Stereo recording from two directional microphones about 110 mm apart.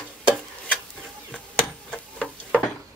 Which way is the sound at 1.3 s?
10° left (ahead or behind).